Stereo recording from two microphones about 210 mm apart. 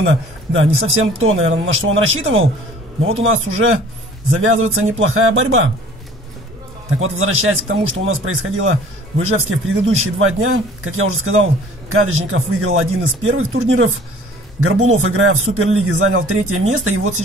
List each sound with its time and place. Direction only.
0.0 s a man's voice: 65° right (ahead or behind)
7.0 s a man's voice: 75° right (ahead or behind)